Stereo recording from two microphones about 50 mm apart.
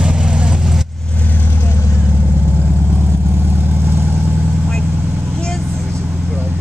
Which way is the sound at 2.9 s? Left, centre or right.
Right.